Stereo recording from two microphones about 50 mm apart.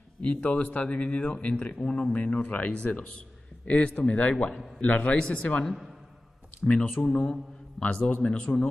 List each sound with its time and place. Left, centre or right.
0.2 s a man's voice: left
1.8 s speech: centre
2.1 s a man's voice: left
4.8 s a man's voice: left; by 7.3 s centre
7.8 s a man's voice: left